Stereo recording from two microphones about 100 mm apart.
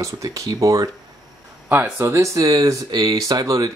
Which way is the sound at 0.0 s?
35° right (ahead or behind).